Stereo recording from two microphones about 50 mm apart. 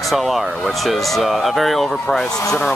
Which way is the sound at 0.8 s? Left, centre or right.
Centre.